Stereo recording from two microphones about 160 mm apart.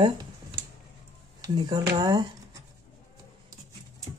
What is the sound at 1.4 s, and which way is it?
Speech, 25° right (ahead or behind).